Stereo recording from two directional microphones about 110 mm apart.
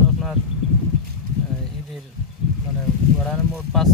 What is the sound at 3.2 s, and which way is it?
Speech, 5° left (ahead or behind).